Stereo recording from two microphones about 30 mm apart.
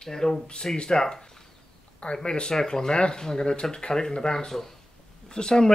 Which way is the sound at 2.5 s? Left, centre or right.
Centre.